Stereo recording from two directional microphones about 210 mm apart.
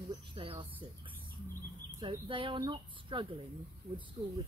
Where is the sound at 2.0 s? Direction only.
25° right (ahead or behind).